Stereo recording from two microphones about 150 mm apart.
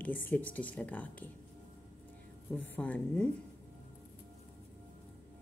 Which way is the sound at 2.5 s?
10° left (ahead or behind).